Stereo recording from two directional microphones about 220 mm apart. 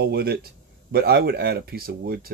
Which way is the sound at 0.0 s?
45° right (ahead or behind).